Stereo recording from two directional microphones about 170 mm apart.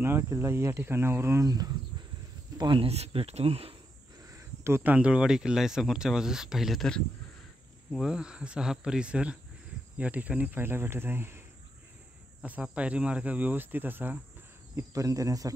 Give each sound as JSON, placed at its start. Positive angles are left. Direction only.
{"t": 0.0, "sound": "speech", "side_deg": -15}
{"t": 4.3, "sound": "speech", "side_deg": -15}